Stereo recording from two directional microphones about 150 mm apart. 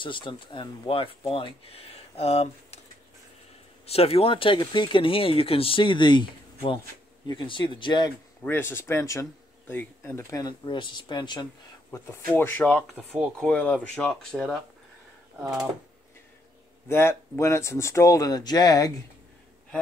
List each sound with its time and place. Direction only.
0.0 s speech: 35° left (ahead or behind)
3.8 s speech: 40° left (ahead or behind)
8.5 s speech: 15° left (ahead or behind)
10.4 s speech: 30° left (ahead or behind)
12.3 s speech: 15° left (ahead or behind)
12.9 s speech: 10° right (ahead or behind)
13.4 s speech: 10° left (ahead or behind)
16.9 s speech: 15° left (ahead or behind)